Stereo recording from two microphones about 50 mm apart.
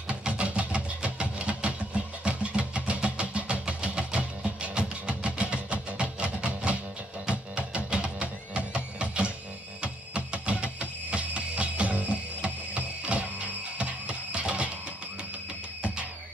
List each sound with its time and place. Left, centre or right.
0.1 s music: right
9.8 s a sound: right
12.7 s music: right